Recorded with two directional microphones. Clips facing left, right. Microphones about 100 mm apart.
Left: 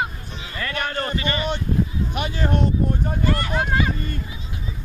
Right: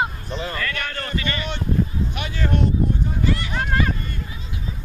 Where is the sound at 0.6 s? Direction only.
25° left (ahead or behind).